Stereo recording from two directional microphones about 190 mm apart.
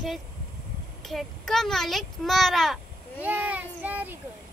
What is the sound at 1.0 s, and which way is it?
A child's voice, centre (ahead or behind).